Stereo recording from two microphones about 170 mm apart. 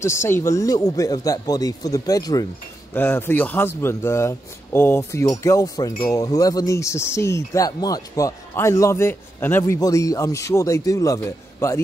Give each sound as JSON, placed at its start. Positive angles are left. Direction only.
{"t": 0.0, "sound": "speech", "side_deg": 15}